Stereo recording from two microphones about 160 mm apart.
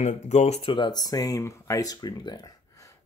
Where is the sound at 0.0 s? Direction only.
45° left (ahead or behind).